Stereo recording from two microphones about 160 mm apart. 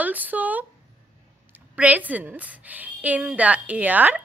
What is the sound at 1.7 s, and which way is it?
A woman's voice, 10° right (ahead or behind).